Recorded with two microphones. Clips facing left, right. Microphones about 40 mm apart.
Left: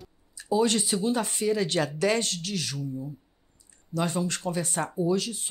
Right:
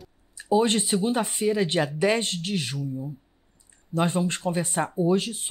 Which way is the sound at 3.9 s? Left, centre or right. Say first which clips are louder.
Right 3 dB; right.